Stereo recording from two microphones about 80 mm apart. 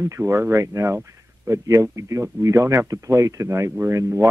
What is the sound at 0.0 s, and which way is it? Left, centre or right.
Speech, right.